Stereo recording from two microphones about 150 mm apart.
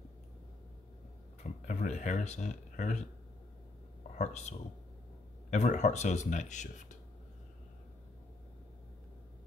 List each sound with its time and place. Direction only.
1.4 s speech: 55° left (ahead or behind)
4.1 s speech: 50° left (ahead or behind)